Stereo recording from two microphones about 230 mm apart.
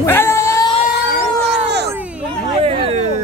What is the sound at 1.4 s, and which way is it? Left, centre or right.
Cat, right.